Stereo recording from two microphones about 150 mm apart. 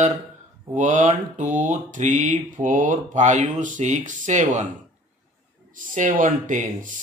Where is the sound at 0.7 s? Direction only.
55° right (ahead or behind).